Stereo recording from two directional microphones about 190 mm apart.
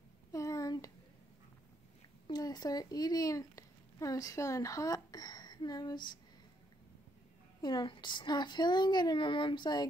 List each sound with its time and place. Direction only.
0.3 s a sound: 15° left (ahead or behind)
2.2 s speech: 20° left (ahead or behind)
7.6 s speech: 25° left (ahead or behind)